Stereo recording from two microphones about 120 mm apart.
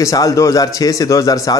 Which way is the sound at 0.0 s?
30° left (ahead or behind).